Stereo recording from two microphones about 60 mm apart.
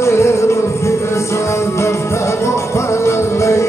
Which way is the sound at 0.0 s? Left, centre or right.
Left.